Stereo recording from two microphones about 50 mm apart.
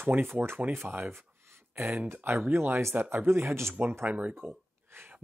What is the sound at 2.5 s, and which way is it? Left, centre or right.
Speech, right.